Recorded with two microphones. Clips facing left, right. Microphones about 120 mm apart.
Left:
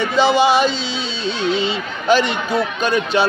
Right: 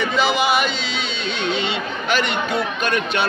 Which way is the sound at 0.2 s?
30° left (ahead or behind).